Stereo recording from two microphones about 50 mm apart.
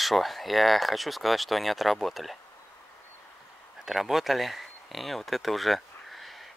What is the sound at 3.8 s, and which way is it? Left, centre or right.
Speech, centre.